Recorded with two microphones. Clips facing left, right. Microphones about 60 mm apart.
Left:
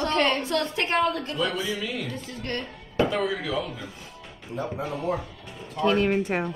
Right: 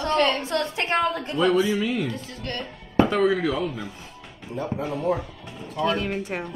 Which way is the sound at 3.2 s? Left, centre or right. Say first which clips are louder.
Right 5 dB; right.